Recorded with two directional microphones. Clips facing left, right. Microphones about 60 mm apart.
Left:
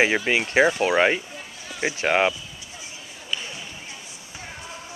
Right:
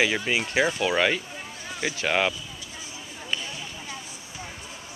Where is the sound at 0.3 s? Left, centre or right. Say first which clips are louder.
Left 5 dB; left.